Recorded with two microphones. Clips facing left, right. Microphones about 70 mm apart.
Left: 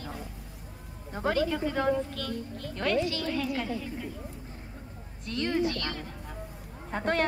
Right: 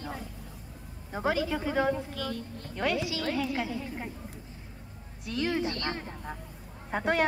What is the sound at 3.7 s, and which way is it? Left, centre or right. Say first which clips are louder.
Speech: even; right.